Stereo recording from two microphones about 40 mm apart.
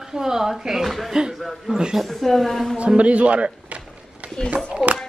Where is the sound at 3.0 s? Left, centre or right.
Right.